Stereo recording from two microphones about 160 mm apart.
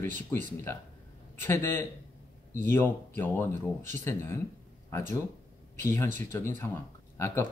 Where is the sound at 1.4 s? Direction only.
15° left (ahead or behind).